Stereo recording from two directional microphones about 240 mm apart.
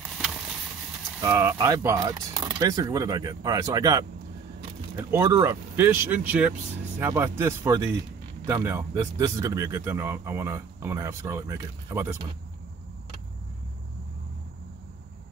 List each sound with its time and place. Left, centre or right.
1.2 s speech: centre